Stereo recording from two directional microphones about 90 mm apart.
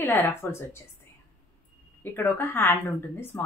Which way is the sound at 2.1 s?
25° left (ahead or behind).